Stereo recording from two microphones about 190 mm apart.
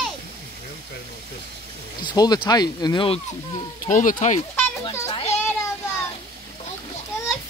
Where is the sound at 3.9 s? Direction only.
45° left (ahead or behind).